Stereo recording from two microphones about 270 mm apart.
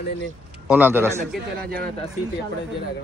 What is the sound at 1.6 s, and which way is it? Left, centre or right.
Speech, right.